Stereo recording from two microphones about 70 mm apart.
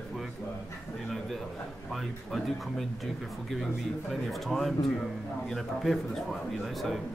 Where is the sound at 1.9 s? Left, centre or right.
Centre.